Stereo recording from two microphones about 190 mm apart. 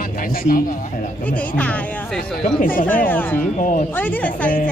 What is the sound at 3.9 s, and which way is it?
Speech, 10° left (ahead or behind).